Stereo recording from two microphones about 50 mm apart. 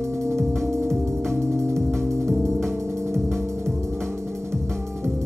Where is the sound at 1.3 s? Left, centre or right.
Right.